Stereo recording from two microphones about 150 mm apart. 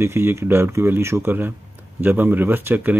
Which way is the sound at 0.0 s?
15° right (ahead or behind).